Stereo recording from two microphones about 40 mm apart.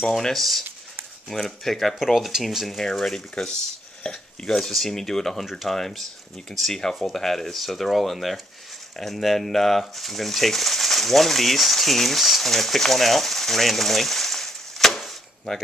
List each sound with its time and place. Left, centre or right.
0.1 s speech: centre
2.1 s speech: centre
2.8 s speech: centre
4.0 s chopping: centre
4.6 s speech: centre
5.4 s speech: centre